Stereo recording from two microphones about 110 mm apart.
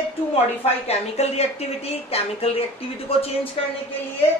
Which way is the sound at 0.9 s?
80° left.